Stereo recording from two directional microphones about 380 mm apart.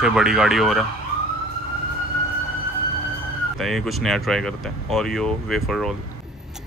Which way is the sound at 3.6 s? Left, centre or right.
Centre.